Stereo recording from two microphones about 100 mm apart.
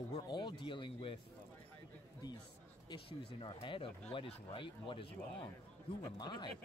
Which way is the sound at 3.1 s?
70° left (ahead or behind).